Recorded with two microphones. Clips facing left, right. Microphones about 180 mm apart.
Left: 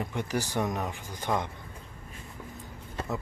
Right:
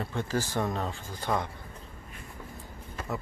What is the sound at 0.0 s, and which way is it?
Speech, 15° left (ahead or behind).